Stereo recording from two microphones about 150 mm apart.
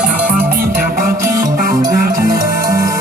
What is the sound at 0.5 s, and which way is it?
Music, 75° right (ahead or behind).